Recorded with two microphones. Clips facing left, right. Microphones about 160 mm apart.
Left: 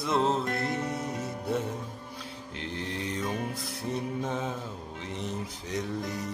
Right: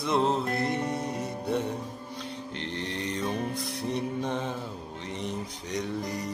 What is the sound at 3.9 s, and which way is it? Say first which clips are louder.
Music: right 1 dB; 5° left (ahead or behind).